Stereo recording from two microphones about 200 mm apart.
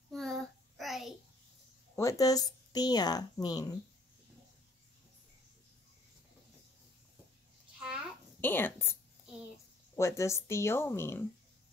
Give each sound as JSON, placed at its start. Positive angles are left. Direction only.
{"t": 0.1, "sound": "child singing", "side_deg": 0}
{"t": 2.0, "sound": "speech", "side_deg": 15}
{"t": 8.4, "sound": "speech", "side_deg": 10}
{"t": 9.9, "sound": "speech", "side_deg": 15}